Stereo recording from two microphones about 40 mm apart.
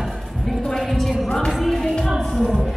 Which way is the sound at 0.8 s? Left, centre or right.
Centre.